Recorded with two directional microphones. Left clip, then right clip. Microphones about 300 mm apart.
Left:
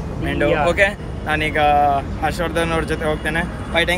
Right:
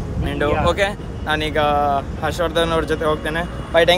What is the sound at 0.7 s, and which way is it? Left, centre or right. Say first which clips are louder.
Speech: left 2 dB; centre.